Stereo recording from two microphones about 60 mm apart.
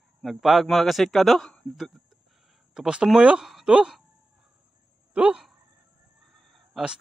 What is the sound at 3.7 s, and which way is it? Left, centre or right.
Speech, centre.